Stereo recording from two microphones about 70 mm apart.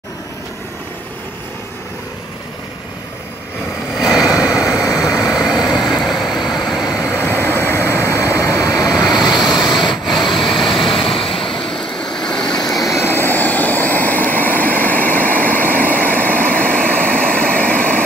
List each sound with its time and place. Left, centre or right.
3.9 s vehicle: centre
7.1 s vehicle: left
9.5 s rub: centre
10.0 s vehicle: centre
13.0 s vehicle: left